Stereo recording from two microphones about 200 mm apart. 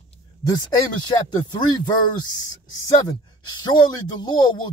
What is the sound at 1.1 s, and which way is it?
Speech, 20° left (ahead or behind).